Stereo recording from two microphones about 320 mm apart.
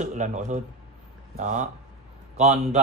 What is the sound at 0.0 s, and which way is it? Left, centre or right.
Speech, right.